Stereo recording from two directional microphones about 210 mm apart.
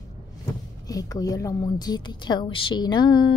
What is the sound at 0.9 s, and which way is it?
A woman's voice, 15° left (ahead or behind).